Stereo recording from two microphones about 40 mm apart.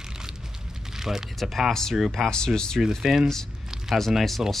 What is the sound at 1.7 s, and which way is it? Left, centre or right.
Speech, centre.